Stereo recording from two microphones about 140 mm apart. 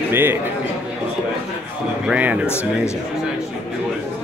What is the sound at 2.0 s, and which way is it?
Speech, 10° right (ahead or behind).